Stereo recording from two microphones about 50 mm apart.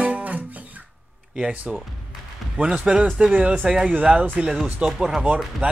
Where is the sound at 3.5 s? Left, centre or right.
Centre.